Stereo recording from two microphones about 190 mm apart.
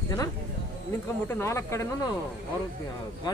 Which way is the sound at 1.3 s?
15° left (ahead or behind).